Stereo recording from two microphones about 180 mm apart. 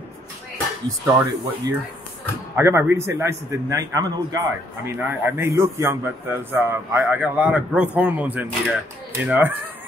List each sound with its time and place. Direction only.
1.0 s a man's voice: 15° right (ahead or behind)